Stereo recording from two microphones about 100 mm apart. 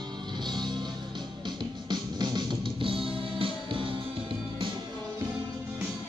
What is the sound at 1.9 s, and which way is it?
Music, 45° right (ahead or behind).